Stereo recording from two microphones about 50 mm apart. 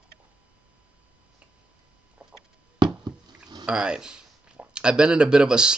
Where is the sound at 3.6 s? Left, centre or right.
Centre.